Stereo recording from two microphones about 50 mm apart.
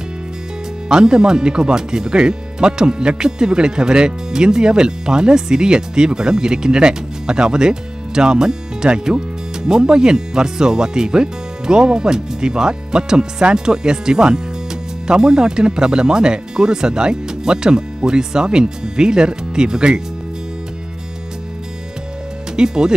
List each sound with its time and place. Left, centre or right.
0.8 s speech: centre
22.6 s speech: centre